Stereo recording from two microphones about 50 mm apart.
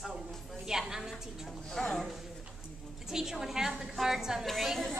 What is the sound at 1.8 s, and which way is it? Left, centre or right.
Speech, centre.